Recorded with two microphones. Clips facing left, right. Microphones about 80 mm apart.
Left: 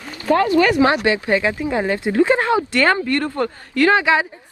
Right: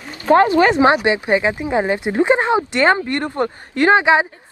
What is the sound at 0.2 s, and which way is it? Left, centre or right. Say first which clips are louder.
Speech: right 3 dB; right.